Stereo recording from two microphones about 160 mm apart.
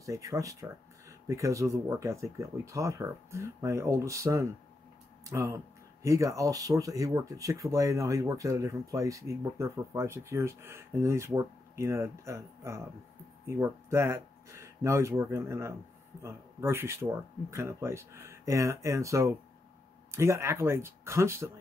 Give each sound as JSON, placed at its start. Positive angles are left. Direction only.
{"t": 0.0, "sound": "speech", "side_deg": -20}